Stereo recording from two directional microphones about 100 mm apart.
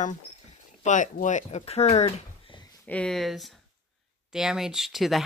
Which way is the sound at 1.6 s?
90° left.